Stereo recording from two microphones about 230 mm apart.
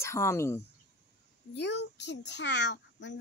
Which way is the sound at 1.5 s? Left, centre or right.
Left.